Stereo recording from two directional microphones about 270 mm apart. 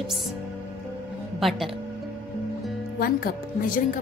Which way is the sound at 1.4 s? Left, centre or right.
Centre.